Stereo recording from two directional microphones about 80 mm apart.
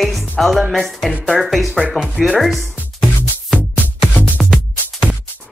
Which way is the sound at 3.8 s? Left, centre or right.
Centre.